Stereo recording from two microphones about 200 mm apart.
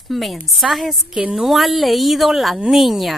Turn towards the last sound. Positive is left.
turn(degrees=0)  # may be behind; listen again after turning